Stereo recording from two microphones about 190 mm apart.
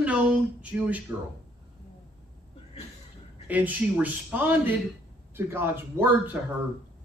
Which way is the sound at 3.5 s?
10° right (ahead or behind).